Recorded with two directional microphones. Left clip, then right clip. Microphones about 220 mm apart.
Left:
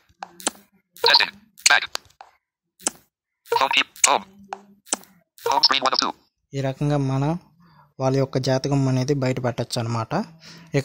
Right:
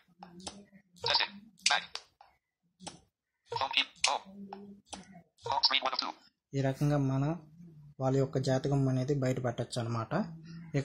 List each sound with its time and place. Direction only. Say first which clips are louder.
1.0 s plop: left 14 dB; 35° left (ahead or behind)
3.4 s a sound: left 12 dB; 40° left (ahead or behind)
5.4 s speech: left 11 dB; 40° left (ahead or behind)